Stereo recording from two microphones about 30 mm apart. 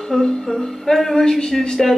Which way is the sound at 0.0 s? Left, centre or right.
Centre.